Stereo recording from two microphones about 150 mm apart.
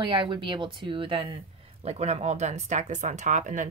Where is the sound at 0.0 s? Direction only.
35° right (ahead or behind).